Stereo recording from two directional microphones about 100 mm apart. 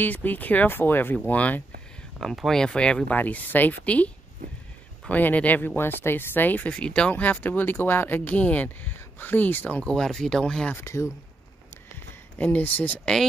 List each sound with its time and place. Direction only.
0.0 s speech: 15° left (ahead or behind)
2.1 s speech: 5° left (ahead or behind)
10.8 s speech: 30° left (ahead or behind)
12.4 s speech: 15° left (ahead or behind)